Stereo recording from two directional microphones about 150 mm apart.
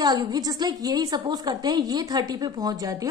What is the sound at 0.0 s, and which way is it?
A woman's voice, 25° right (ahead or behind).